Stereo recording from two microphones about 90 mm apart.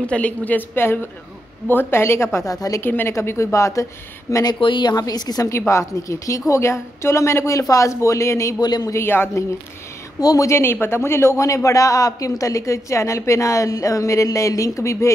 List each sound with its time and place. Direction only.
0.0 s a woman's voice: 15° left (ahead or behind); by 2.8 s 40° left (ahead or behind)
2.8 s a woman's voice: 25° left (ahead or behind); by 4.6 s 40° left (ahead or behind)
4.6 s speech: 65° left (ahead or behind)
4.9 s a woman's voice: 45° left (ahead or behind)
5.7 s a man's voice: 35° left (ahead or behind)
8.5 s a woman's voice: 50° left (ahead or behind)
8.9 s a woman's voice: 25° left (ahead or behind)
10.2 s a man's voice: 35° left (ahead or behind)